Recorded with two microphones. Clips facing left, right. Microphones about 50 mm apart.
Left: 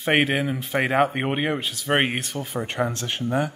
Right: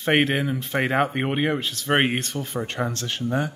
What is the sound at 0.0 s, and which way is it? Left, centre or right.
Speech, centre.